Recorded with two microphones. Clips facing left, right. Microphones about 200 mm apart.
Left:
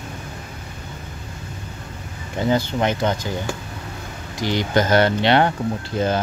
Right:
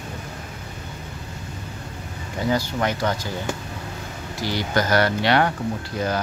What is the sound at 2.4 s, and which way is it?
Speech, 25° left (ahead or behind).